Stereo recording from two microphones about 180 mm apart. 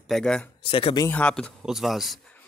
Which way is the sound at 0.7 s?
30° left (ahead or behind).